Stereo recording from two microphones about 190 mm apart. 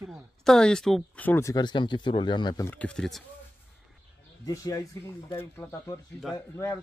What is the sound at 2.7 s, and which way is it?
Speech, 5° left (ahead or behind).